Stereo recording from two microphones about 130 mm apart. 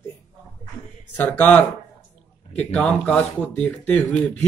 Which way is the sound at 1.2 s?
15° left (ahead or behind).